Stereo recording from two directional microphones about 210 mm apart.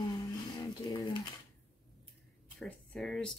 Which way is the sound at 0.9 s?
20° left (ahead or behind).